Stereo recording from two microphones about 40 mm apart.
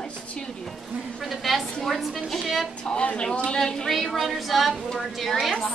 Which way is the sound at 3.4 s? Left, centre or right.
Centre.